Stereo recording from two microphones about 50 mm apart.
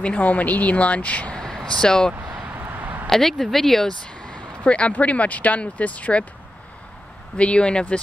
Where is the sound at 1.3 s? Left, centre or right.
Centre.